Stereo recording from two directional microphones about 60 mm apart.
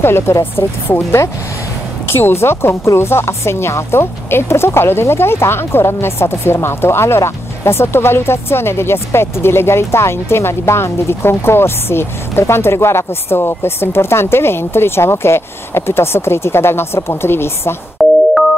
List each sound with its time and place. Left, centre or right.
0.0 s speech: left
2.0 s speech: left
18.0 s busy signal: centre